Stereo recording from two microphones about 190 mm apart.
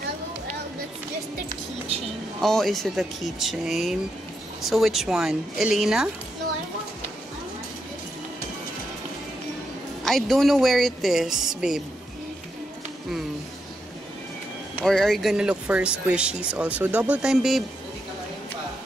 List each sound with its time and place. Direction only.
2.4 s speech: centre (ahead or behind)
10.0 s speech: centre (ahead or behind)
14.8 s speech: centre (ahead or behind)